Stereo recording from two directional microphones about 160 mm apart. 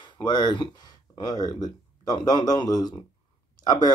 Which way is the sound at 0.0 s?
30° left (ahead or behind).